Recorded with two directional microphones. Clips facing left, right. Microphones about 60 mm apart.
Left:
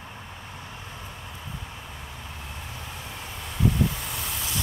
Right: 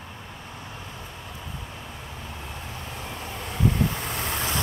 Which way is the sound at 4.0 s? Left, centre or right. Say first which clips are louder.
Right 4 dB; right.